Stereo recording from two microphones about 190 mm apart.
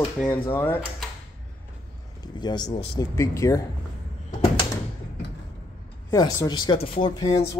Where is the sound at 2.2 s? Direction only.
25° left (ahead or behind).